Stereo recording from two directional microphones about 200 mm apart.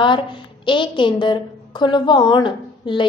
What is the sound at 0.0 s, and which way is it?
A woman's voice, 25° left (ahead or behind).